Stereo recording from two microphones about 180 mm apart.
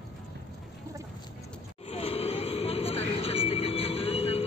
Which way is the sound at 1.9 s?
35° left (ahead or behind).